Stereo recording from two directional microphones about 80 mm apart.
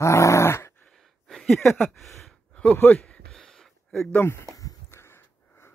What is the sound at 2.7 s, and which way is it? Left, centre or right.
Speech, left.